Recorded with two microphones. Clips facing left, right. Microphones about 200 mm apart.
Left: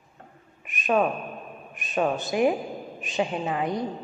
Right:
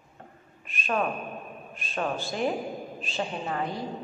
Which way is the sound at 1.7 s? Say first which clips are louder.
Left 6 dB; 15° left (ahead or behind).